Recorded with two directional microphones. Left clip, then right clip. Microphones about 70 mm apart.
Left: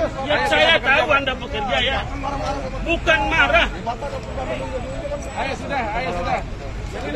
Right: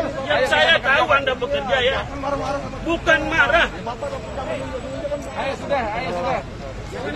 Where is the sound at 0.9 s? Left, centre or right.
Right.